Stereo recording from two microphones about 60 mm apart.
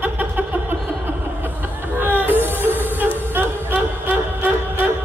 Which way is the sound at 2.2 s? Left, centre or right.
Right.